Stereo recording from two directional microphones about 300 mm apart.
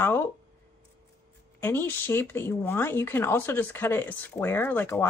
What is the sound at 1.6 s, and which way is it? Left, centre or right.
Speech, centre.